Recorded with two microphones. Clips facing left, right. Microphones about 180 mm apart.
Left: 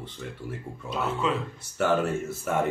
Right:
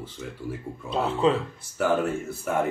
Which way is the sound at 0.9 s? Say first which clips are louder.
Right 5 dB; 30° right (ahead or behind).